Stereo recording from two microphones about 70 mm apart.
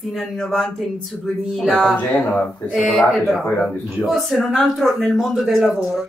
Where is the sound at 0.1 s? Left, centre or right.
Centre.